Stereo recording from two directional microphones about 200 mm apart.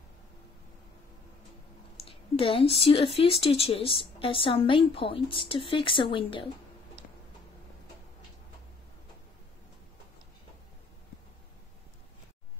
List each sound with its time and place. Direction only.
2.0 s a woman's voice: 30° left (ahead or behind)